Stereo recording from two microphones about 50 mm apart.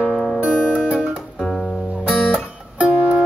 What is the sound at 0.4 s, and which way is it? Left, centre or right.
Music, centre.